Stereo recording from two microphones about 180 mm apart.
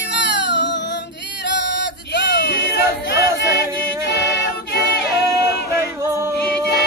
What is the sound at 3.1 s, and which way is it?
Choir, 65° left (ahead or behind).